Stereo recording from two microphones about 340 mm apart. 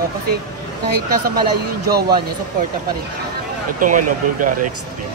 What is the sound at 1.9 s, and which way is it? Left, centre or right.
Speech, right.